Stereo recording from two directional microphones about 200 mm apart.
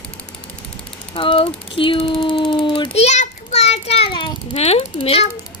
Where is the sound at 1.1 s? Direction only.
25° left (ahead or behind).